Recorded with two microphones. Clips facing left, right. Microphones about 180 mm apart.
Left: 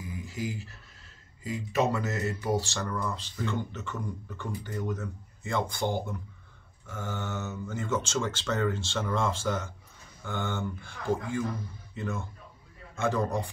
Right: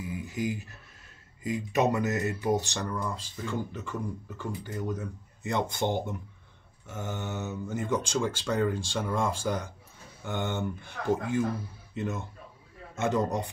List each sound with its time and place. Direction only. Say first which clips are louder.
0.3 s speech: right 3 dB; 15° right (ahead or behind)